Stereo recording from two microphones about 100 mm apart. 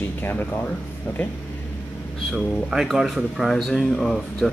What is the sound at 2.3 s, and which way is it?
Speech, 5° right (ahead or behind).